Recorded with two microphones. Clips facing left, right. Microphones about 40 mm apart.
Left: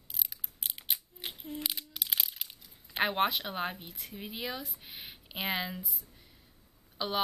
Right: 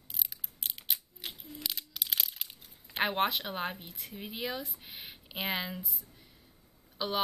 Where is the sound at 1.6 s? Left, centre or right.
Left.